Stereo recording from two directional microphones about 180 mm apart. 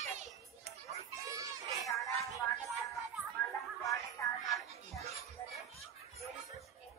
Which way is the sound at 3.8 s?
20° left (ahead or behind).